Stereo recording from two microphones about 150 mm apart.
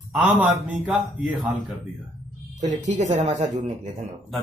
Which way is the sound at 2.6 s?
55° right (ahead or behind).